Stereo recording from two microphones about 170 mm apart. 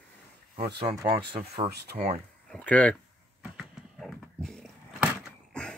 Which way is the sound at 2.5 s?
10° left (ahead or behind).